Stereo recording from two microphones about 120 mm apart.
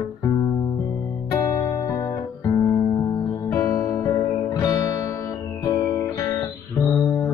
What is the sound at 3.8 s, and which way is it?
Music, 30° left (ahead or behind).